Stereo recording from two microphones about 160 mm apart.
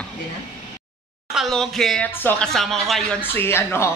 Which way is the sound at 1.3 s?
Centre (ahead or behind).